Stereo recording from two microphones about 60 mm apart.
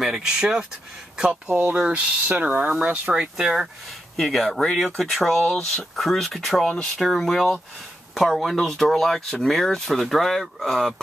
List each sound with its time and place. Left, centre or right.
0.0 s speech: centre
1.3 s speech: right; by 5.4 s centre
5.4 s speech: centre
5.8 s speech: centre